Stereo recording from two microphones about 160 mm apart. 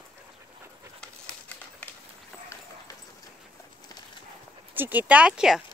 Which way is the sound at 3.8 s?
25° left (ahead or behind).